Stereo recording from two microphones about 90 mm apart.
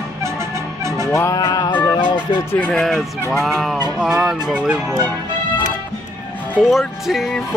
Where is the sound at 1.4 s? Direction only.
55° left (ahead or behind).